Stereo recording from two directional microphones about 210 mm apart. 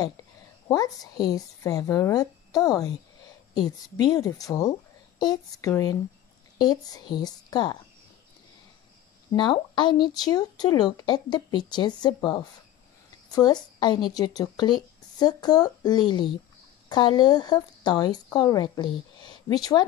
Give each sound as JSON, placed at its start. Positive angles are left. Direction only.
{"t": 0.7, "sound": "speech", "side_deg": 15}
{"t": 9.3, "sound": "a woman's voice", "side_deg": 20}